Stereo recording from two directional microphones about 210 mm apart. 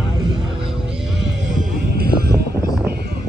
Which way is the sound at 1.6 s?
45° right (ahead or behind).